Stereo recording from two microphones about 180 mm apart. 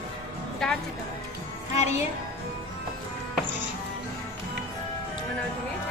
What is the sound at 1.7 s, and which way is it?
Music, 40° left (ahead or behind).